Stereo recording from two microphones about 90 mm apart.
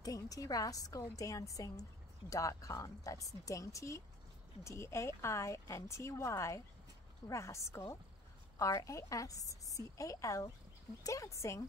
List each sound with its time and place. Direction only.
0.0 s speech: 40° left (ahead or behind)